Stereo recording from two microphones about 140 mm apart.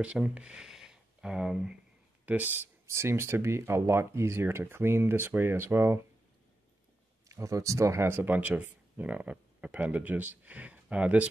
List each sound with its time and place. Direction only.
0.0 s speech: 10° right (ahead or behind)
7.2 s speech: 20° right (ahead or behind)